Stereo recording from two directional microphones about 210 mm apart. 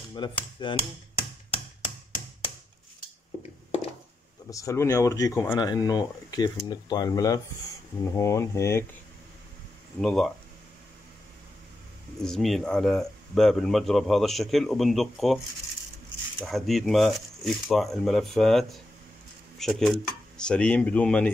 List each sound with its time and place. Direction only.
0.1 s hammer: 20° left (ahead or behind)
4.5 s speech: 15° left (ahead or behind)
9.9 s speech: centre (ahead or behind)
12.2 s speech: centre (ahead or behind)